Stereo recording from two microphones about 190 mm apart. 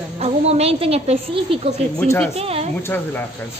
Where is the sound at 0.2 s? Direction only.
35° right (ahead or behind).